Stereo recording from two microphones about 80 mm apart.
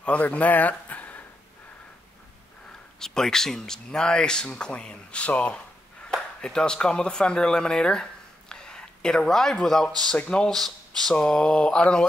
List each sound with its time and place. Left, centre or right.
0.0 s speech: centre
3.0 s speech: centre